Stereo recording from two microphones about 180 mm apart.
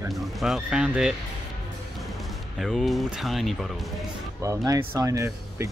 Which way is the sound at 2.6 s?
Centre (ahead or behind).